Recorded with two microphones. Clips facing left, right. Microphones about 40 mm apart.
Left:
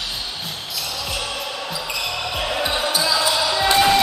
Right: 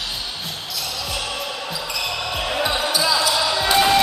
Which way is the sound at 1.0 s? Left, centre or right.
Centre.